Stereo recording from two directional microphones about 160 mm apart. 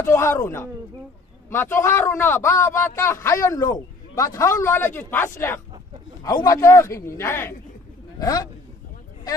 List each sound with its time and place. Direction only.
0.0 s a man's voice: 15° left (ahead or behind)